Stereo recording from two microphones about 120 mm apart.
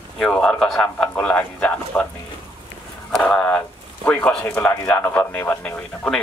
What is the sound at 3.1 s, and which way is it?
A man's voice, 5° left (ahead or behind).